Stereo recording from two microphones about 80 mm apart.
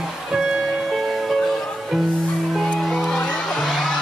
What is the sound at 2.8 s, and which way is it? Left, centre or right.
Music, centre.